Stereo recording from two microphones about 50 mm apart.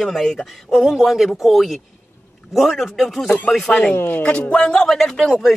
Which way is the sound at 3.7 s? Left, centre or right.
Centre.